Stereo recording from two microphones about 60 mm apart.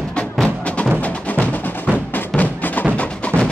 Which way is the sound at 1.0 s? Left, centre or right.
Left.